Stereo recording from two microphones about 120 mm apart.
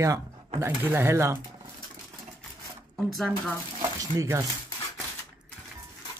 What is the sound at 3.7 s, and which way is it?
Speech, 30° right (ahead or behind).